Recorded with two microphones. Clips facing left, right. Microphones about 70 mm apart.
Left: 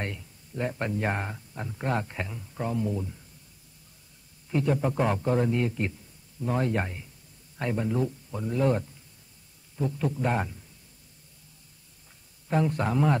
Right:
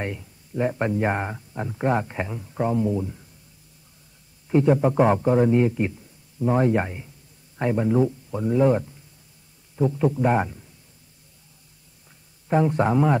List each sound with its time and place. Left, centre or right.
0.0 s speech: centre
4.5 s speech: right
12.4 s speech: centre